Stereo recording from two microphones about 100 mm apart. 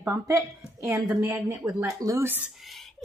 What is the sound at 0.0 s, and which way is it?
A woman's voice, 25° right (ahead or behind).